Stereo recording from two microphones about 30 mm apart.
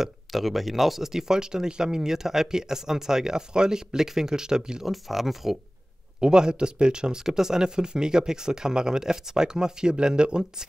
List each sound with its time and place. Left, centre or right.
0.3 s speech: centre
1.1 s speech: centre
4.8 s speech: centre
6.2 s speech: right
7.2 s speech: centre; by 10.4 s right